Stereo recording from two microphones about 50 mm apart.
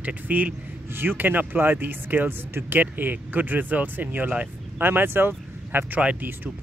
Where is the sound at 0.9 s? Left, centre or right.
Right.